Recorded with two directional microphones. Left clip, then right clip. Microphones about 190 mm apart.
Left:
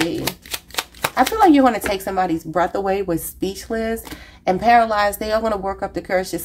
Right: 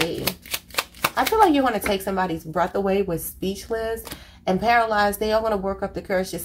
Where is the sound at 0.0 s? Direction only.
15° left (ahead or behind).